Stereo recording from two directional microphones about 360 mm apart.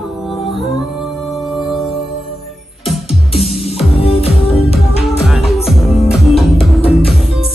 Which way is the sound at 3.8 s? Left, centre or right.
Centre.